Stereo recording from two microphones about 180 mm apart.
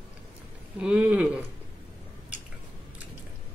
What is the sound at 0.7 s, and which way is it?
Speech, 5° right (ahead or behind).